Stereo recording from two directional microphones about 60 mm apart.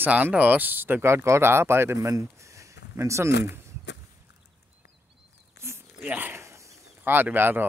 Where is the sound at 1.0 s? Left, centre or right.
Right.